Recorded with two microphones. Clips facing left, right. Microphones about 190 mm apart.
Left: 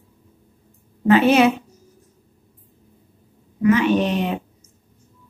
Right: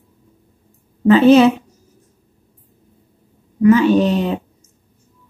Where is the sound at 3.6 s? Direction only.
35° right (ahead or behind).